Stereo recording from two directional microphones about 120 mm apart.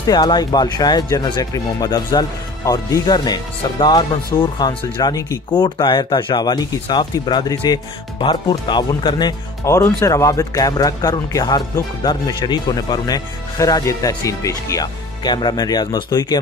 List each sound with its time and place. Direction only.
0.0 s speech: 35° left (ahead or behind)
9.7 s speech: 25° left (ahead or behind)